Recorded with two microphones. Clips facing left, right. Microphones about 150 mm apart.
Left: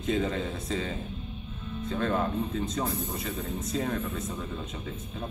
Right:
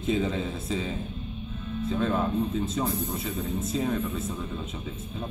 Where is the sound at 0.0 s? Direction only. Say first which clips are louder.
Right 1 dB; centre (ahead or behind).